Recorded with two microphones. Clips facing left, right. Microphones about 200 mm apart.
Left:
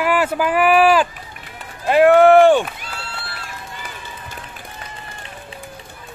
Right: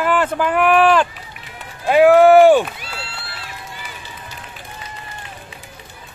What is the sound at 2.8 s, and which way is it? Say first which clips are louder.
Run: even; 50° left (ahead or behind).